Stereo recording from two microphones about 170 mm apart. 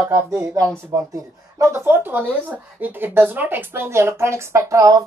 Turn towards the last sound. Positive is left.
turn(degrees=-20)  # may be behind; listen again after turning